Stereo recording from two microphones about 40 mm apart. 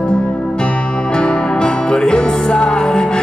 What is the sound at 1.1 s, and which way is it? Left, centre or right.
Music, left.